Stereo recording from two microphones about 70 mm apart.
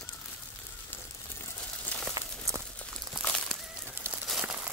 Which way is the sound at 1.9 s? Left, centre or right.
Left.